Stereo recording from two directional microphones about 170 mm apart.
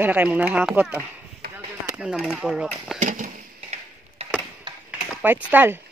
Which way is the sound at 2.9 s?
45° right (ahead or behind).